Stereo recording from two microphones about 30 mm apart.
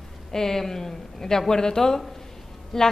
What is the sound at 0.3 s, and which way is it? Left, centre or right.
A woman's voice, centre.